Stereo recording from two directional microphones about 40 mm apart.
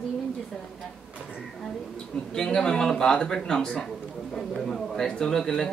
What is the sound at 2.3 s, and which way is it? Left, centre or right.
A man's voice, left.